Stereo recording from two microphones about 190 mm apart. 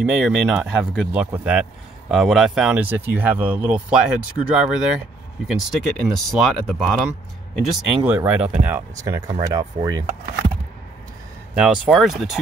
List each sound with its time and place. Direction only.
0.0 s speech: centre (ahead or behind)
7.7 s speech: 10° right (ahead or behind)
11.5 s speech: 5° right (ahead or behind)